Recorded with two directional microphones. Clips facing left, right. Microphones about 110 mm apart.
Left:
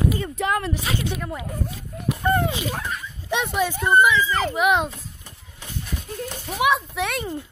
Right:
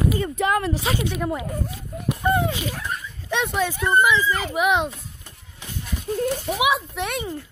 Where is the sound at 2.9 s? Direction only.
90° left.